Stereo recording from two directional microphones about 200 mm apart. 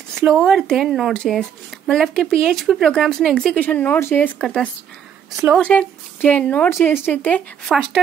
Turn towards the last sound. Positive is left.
turn(degrees=0)  # may be behind; listen again after turning